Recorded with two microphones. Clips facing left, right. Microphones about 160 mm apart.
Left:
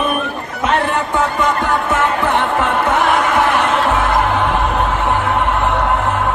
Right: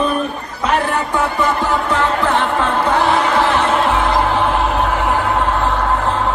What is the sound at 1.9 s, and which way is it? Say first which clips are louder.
Music: even; 20° left (ahead or behind).